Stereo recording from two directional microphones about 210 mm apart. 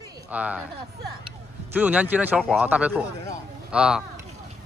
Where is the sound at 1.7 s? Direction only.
10° right (ahead or behind).